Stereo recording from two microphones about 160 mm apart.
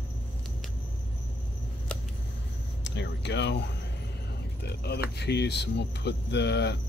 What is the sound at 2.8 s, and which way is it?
Speech, 90° left.